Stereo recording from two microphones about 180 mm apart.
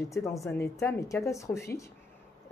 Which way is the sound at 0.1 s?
15° left (ahead or behind).